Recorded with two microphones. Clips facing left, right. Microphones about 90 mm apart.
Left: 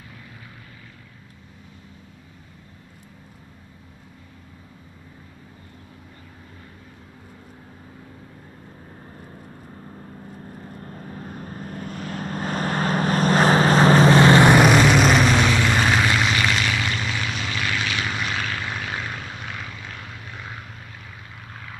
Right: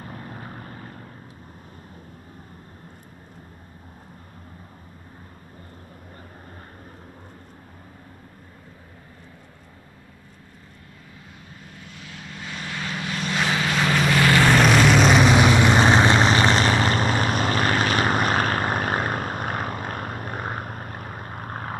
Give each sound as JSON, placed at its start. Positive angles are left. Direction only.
{"t": 0.0, "sound": "vehicle", "side_deg": -45}
{"t": 10.8, "sound": "vehicle", "side_deg": 45}
{"t": 14.5, "sound": "vehicle", "side_deg": 10}
{"t": 15.3, "sound": "vehicle", "side_deg": -20}